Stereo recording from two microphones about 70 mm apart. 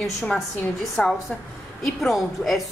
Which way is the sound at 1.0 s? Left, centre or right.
Centre.